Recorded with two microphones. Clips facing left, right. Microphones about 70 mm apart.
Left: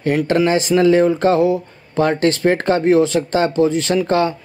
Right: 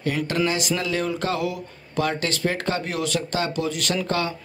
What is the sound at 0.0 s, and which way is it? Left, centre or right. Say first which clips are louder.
Speech: left 8 dB; left.